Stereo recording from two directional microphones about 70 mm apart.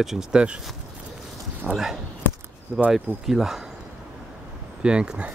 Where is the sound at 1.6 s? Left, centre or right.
Centre.